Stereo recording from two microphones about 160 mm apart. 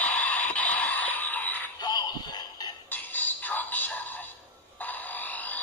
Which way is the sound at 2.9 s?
10° left (ahead or behind).